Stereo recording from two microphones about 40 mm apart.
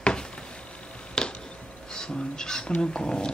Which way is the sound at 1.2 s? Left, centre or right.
Centre.